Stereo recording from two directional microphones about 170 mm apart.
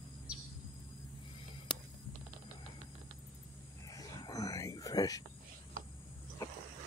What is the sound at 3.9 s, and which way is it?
Whispering, 20° left (ahead or behind).